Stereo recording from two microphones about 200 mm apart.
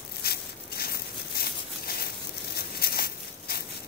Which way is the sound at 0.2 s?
50° left (ahead or behind).